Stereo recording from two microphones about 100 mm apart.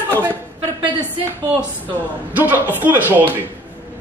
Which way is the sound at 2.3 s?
15° right (ahead or behind).